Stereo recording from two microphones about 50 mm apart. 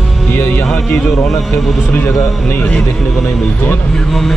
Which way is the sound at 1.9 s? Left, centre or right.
Left.